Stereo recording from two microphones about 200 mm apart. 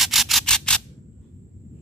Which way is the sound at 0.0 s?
Centre (ahead or behind).